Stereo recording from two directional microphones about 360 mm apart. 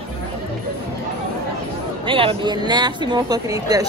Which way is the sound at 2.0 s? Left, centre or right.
Centre.